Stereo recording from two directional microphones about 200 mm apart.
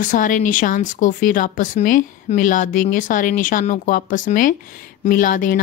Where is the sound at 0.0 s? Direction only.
40° left (ahead or behind).